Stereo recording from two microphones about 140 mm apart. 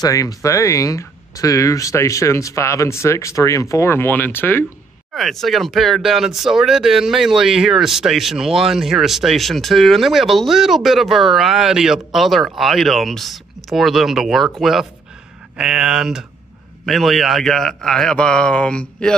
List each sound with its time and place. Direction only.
0.0 s speech: 25° left (ahead or behind)
5.1 s speech: centre (ahead or behind)